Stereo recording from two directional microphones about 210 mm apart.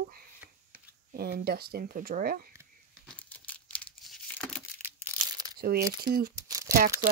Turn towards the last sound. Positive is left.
turn(degrees=-15)  # may be behind; listen again after turning